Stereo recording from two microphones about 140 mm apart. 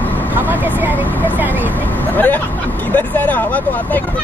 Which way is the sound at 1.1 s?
10° left (ahead or behind).